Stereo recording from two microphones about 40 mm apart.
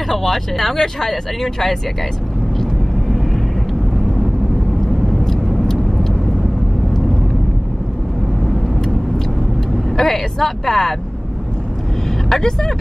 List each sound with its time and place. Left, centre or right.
0.1 s speech: centre
5.0 s vehicle: centre
9.8 s speech: centre
12.3 s speech: centre